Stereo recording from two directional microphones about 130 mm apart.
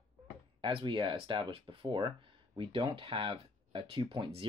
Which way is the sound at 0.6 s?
40° right (ahead or behind).